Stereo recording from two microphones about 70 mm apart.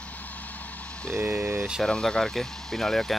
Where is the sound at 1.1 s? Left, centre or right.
Right.